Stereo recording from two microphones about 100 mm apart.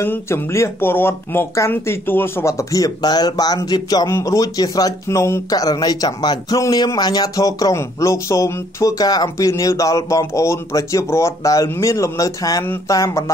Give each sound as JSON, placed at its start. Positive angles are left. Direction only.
{"t": 0.0, "sound": "speech", "side_deg": 25}